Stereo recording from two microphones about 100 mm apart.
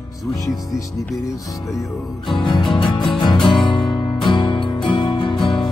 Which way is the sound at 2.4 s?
50° left (ahead or behind).